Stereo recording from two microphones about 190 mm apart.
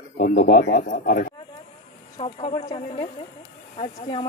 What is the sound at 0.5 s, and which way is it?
Speech, 50° left (ahead or behind).